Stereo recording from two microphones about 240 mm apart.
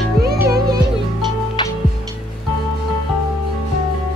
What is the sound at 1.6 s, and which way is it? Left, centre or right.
Music, centre.